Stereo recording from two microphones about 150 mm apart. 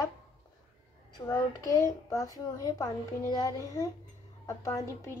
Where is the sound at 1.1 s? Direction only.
20° left (ahead or behind).